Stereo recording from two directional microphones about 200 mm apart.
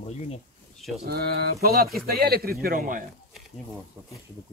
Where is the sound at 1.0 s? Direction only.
50° right (ahead or behind).